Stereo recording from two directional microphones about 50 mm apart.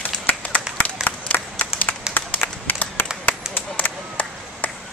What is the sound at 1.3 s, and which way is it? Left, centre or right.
Applause, left.